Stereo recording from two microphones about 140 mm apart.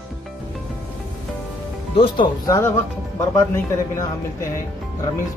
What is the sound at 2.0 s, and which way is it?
Speech, 35° left (ahead or behind).